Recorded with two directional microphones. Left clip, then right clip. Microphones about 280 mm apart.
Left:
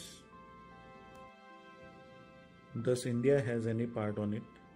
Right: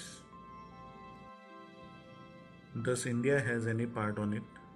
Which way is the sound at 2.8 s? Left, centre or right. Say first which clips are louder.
Left 1 dB; left.